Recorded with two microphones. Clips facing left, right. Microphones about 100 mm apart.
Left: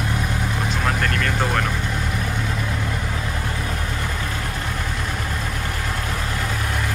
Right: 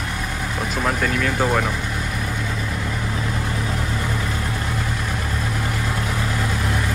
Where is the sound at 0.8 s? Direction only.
5° right (ahead or behind).